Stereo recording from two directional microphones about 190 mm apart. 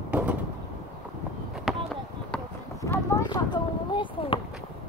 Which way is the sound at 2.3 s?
10° left (ahead or behind).